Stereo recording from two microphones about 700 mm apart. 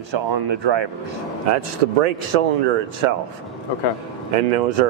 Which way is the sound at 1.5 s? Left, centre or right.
Right.